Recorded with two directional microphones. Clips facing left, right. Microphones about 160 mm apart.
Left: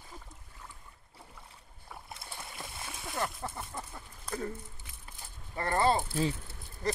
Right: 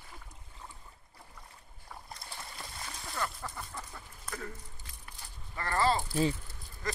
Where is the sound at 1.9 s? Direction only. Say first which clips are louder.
Left 1 dB; 5° left (ahead or behind).